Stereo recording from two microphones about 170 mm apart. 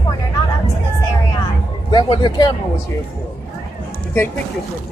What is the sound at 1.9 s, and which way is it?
Speech, 25° left (ahead or behind).